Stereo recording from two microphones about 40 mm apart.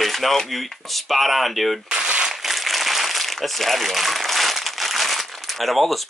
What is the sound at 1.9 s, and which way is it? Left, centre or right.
Crumpling, right.